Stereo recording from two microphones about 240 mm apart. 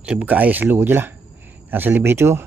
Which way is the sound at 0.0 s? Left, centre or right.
Centre.